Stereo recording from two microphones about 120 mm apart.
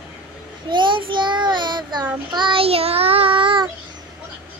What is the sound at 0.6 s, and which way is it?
Child singing, 40° right (ahead or behind).